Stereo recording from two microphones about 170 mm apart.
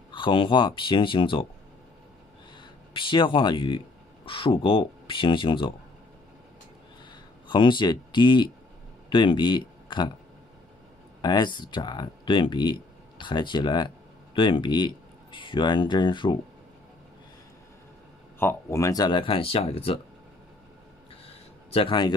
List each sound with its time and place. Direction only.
0.1 s speech: 30° left (ahead or behind)
2.9 s speech: 30° left (ahead or behind)
7.4 s speech: 25° left (ahead or behind)
11.1 s speech: 25° left (ahead or behind)
18.4 s speech: 15° left (ahead or behind); by 20.0 s 35° left (ahead or behind)
21.3 s a sound: 35° left (ahead or behind)